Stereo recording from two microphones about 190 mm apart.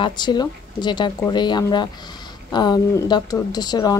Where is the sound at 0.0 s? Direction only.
25° left (ahead or behind).